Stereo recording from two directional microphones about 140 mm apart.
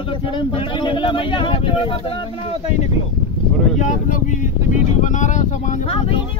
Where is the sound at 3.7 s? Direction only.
60° left (ahead or behind).